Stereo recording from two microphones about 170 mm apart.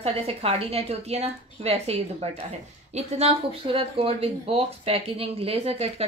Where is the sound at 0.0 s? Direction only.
35° right (ahead or behind).